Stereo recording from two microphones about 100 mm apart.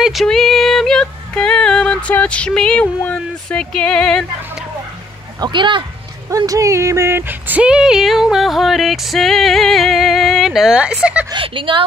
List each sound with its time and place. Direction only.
0.0 s yodeling: centre (ahead or behind)
5.4 s speech: 55° right (ahead or behind)
6.3 s speech: 35° right (ahead or behind); by 11.2 s 10° right (ahead or behind)
11.3 s a woman's voice: 60° right (ahead or behind)